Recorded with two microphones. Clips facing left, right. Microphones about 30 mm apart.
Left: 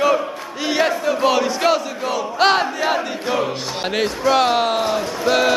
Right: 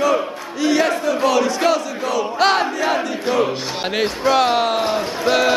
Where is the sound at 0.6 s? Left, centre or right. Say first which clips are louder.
Right 2 dB; centre.